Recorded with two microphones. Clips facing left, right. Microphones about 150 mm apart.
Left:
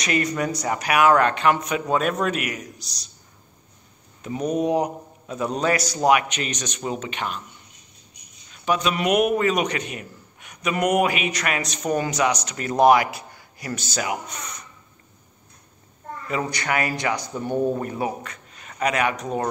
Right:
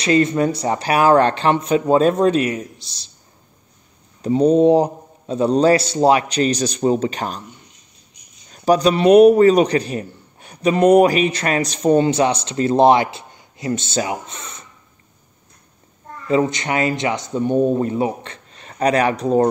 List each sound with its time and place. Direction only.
0.0 s a man's voice: 25° right (ahead or behind)
4.2 s a man's voice: 30° right (ahead or behind)
8.5 s a man's voice: 40° right (ahead or behind)
16.3 s a man's voice: 25° right (ahead or behind)